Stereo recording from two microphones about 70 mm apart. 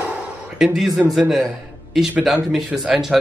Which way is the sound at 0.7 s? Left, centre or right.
Centre.